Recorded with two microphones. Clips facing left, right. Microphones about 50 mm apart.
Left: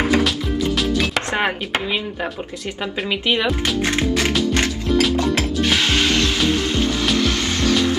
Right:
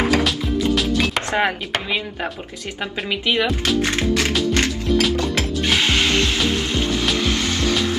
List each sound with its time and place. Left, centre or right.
0.2 s music: centre
1.3 s speech: centre
3.1 s speech: centre
4.0 s music: left
4.4 s music: centre
5.8 s music: right
6.4 s music: centre
7.7 s music: centre